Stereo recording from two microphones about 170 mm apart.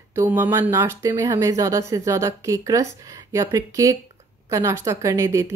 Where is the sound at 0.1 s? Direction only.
15° right (ahead or behind).